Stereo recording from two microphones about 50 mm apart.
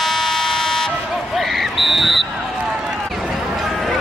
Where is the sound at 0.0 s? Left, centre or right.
Centre.